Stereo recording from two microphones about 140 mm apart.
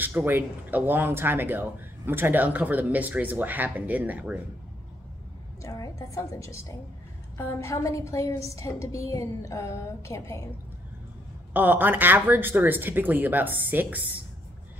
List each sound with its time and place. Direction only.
0.0 s speech: 15° right (ahead or behind)
5.6 s a woman's voice: 25° left (ahead or behind)
11.5 s speech: 15° right (ahead or behind)